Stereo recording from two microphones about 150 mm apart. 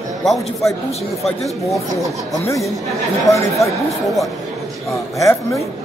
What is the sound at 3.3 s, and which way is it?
Speech, 20° left (ahead or behind).